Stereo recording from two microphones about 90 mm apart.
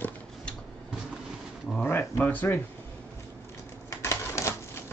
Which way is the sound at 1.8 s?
25° left (ahead or behind).